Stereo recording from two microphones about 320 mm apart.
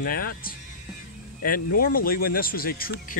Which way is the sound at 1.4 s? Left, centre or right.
Left.